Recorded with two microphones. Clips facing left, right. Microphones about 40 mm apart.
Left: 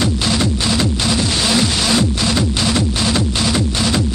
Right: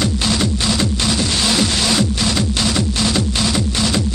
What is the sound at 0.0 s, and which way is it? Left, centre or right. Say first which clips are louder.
Music: left 1 dB; centre.